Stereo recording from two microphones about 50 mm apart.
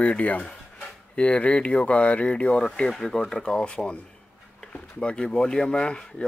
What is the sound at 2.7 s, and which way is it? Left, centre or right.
Speech, centre.